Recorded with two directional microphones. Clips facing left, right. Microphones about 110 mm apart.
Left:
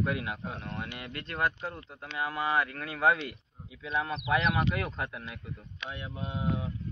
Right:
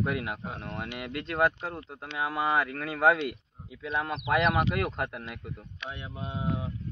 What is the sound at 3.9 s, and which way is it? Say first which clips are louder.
Speech: right 1 dB; 60° right (ahead or behind).